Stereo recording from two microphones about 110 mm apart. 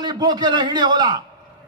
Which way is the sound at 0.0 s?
40° right (ahead or behind).